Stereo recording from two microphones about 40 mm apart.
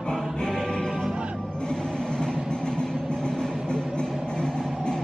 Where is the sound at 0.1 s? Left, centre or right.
Centre.